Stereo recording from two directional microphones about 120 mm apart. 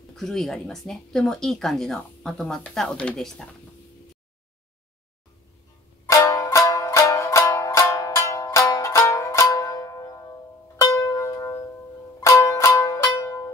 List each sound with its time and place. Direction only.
0.1 s speech: 5° left (ahead or behind)
6.0 s music: 25° left (ahead or behind)